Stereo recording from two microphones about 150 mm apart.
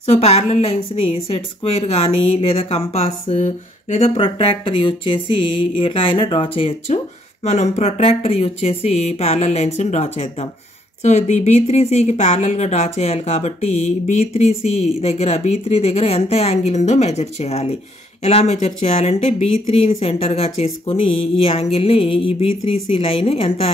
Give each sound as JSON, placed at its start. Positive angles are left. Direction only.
{"t": 0.0, "sound": "speech", "side_deg": 45}